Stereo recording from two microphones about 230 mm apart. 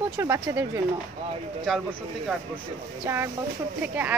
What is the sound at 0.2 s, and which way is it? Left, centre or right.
Speech, centre.